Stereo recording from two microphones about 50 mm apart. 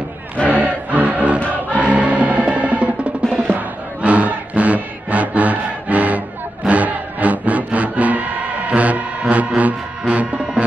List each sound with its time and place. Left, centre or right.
0.5 s music: right
3.4 s battle cry: right
6.7 s music: right